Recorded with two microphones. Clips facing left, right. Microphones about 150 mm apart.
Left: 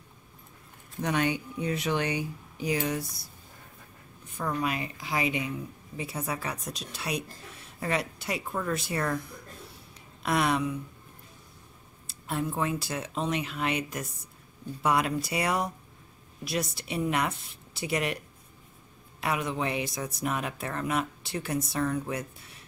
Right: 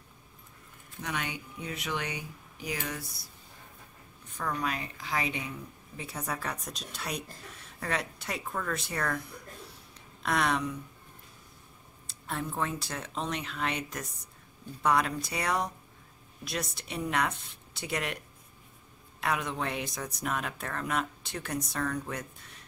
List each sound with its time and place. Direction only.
1.0 s speech: 35° left (ahead or behind)
4.4 s speech: 10° left (ahead or behind)
10.2 s speech: 5° left (ahead or behind)
12.1 s speech: 10° left (ahead or behind)
19.2 s speech: 5° left (ahead or behind)